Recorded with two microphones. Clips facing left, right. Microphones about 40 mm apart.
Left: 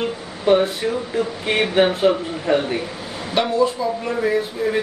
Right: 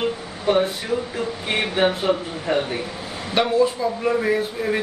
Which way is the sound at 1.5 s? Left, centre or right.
Centre.